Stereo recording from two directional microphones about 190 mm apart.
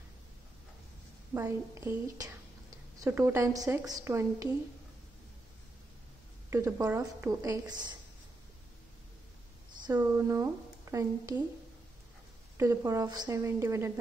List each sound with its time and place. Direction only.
1.3 s a woman's voice: 15° right (ahead or behind)
6.5 s speech: 15° right (ahead or behind)
9.8 s speech: 20° right (ahead or behind)
12.5 s speech: 15° right (ahead or behind)